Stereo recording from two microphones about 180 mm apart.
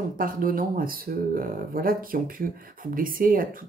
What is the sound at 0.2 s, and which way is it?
Speech, 50° right (ahead or behind).